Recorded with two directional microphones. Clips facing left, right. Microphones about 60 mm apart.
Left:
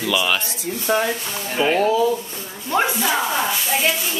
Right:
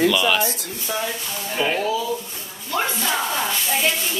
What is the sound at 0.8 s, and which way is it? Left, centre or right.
Speech, left.